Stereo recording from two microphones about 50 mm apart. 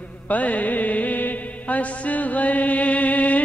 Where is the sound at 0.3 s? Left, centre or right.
Left.